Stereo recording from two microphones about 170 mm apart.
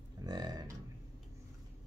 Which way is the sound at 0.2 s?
25° right (ahead or behind).